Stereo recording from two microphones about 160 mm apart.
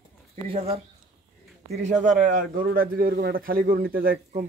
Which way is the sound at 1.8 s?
50° right (ahead or behind).